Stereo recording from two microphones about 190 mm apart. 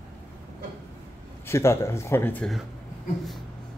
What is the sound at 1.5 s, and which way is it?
Speech, 15° left (ahead or behind).